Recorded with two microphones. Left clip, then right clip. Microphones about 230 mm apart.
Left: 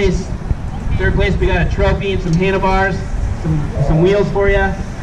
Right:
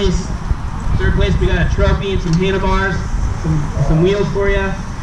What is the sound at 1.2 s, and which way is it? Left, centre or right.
A man's voice, centre.